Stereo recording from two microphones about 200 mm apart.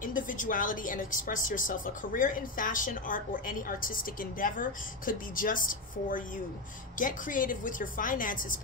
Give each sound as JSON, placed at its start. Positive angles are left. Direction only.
{"t": 0.0, "sound": "a woman's voice", "side_deg": 40}